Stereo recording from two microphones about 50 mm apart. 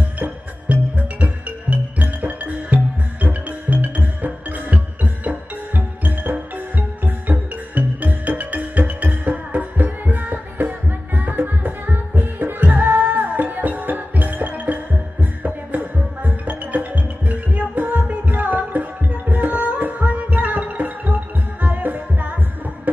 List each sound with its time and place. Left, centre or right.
0.2 s music: right